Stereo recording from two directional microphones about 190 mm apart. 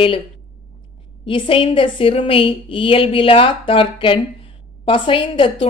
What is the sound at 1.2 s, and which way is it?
A woman's voice, 25° left (ahead or behind).